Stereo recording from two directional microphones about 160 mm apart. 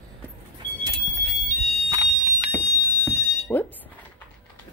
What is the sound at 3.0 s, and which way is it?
Alarm, 10° left (ahead or behind).